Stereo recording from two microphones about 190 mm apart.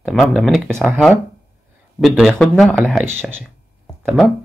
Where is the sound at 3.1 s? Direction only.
10° right (ahead or behind).